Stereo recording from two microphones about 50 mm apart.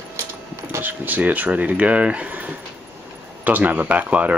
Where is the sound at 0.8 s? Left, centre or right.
Right.